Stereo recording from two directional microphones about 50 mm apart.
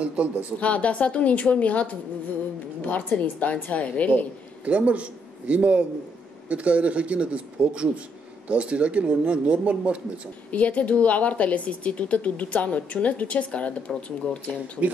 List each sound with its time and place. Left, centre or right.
0.0 s speech: right
0.6 s a woman's voice: left
4.6 s speech: right
10.5 s a woman's voice: left